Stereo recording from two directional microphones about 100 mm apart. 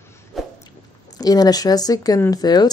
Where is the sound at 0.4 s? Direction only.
Centre (ahead or behind).